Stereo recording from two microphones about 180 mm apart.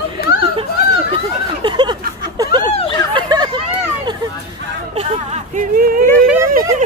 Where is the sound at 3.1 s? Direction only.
25° right (ahead or behind).